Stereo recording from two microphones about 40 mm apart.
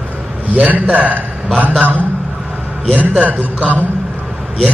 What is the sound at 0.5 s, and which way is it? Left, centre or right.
A man's voice, right.